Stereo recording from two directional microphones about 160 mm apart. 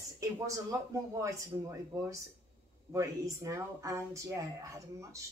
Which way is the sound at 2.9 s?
20° right (ahead or behind).